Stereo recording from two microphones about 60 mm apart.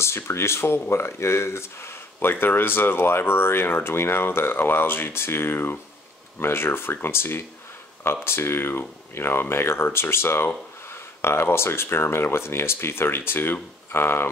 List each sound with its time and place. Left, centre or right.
0.0 s speech: left
2.4 s speech: left